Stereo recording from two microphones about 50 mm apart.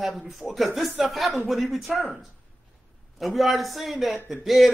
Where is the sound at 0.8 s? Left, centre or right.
Centre.